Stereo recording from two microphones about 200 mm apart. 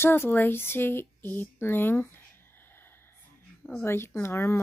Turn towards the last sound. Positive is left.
turn(degrees=15)  # may be behind; listen again after turning